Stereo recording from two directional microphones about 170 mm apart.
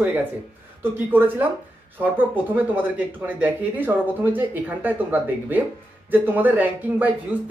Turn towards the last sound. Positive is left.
turn(degrees=-10)  # may be behind; listen again after turning